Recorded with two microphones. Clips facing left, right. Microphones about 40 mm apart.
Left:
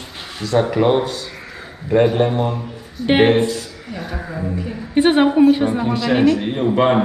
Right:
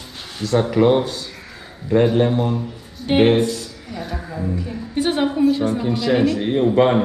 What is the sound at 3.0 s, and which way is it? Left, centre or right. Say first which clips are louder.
Speech: left 1 dB; left.